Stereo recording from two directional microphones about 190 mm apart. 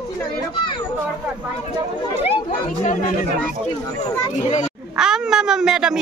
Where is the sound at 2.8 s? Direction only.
45° left (ahead or behind).